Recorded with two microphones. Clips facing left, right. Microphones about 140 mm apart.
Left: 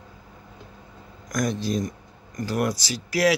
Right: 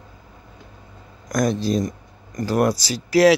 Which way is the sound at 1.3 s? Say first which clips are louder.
Right 5 dB; 35° right (ahead or behind).